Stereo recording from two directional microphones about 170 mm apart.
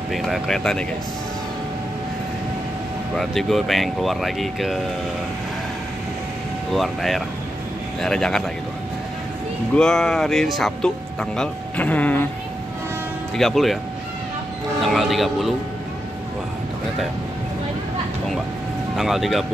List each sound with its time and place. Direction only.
0.1 s speech: centre (ahead or behind)
3.2 s speech: centre (ahead or behind)
6.7 s speech: centre (ahead or behind)
9.8 s speech: 5° left (ahead or behind)
13.4 s speech: centre (ahead or behind)
14.8 s speech: centre (ahead or behind)
18.9 s speech: centre (ahead or behind)